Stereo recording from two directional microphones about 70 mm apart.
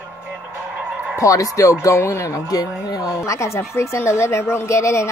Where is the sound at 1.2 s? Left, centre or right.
Left.